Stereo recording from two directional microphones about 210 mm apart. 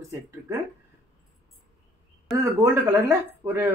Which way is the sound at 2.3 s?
15° right (ahead or behind).